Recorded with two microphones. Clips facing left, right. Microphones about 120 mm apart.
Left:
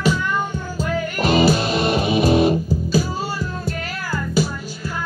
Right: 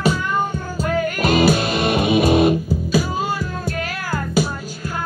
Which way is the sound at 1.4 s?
50° right (ahead or behind).